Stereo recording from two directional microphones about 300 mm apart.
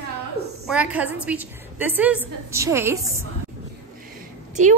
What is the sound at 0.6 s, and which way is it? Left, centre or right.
A woman's voice, centre.